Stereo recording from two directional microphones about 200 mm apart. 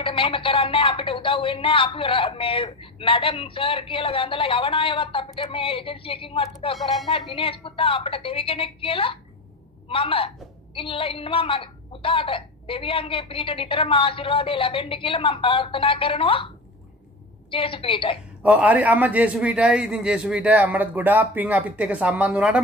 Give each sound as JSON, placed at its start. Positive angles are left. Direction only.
{"t": 0.0, "sound": "speech", "side_deg": 25}
{"t": 6.8, "sound": "speech", "side_deg": 0}
{"t": 7.3, "sound": "speech", "side_deg": 25}
{"t": 17.5, "sound": "speech", "side_deg": 25}
{"t": 18.4, "sound": "a man's voice", "side_deg": -5}